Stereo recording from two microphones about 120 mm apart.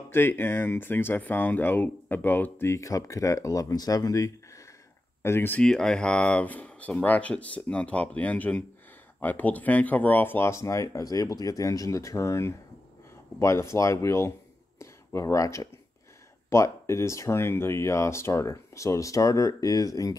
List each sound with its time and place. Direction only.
0.1 s speech: 20° left (ahead or behind)
5.2 s speech: 20° left (ahead or behind)
5.6 s speech: 5° left (ahead or behind); by 14.3 s 25° left (ahead or behind)
14.8 s a sound: 25° left (ahead or behind)
16.4 s speech: 25° left (ahead or behind)